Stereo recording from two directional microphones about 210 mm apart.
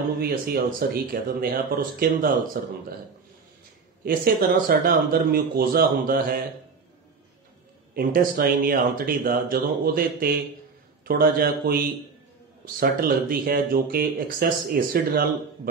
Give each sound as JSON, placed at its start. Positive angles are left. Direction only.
{"t": 0.2, "sound": "speech", "side_deg": -45}
{"t": 4.0, "sound": "speech", "side_deg": -45}
{"t": 7.9, "sound": "speech", "side_deg": -40}